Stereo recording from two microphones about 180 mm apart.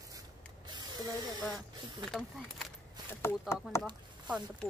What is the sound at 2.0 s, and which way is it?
Speech, 5° left (ahead or behind).